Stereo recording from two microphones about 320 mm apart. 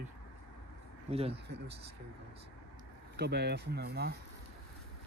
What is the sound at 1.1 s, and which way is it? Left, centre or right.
Speech, centre.